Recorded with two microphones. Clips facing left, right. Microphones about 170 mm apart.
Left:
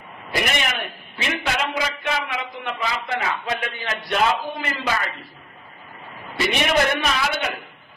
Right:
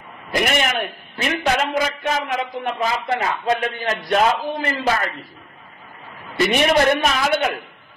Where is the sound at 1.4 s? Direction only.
45° right (ahead or behind).